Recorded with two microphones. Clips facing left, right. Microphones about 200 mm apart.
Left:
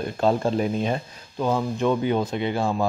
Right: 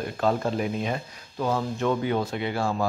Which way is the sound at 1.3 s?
15° left (ahead or behind).